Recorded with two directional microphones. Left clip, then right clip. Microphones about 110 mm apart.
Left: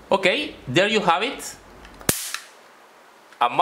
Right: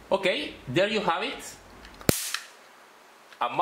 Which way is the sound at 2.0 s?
15° left (ahead or behind).